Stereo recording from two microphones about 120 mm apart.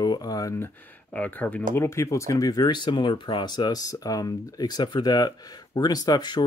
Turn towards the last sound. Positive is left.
turn(degrees=35)  # may be behind; listen again after turning